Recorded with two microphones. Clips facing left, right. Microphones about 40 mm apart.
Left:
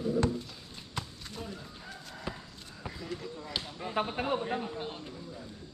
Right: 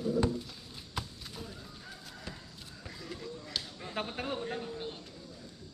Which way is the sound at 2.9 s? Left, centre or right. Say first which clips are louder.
Left 4 dB; centre.